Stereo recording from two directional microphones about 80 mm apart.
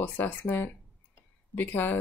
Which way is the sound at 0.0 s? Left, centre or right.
Left.